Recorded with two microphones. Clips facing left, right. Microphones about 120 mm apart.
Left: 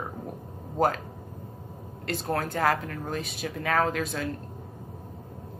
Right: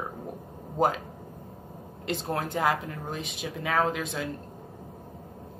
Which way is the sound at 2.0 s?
20° right (ahead or behind).